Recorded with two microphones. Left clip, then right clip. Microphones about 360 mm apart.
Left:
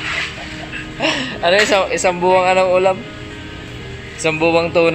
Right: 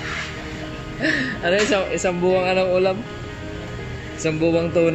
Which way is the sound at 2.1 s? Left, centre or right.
Left.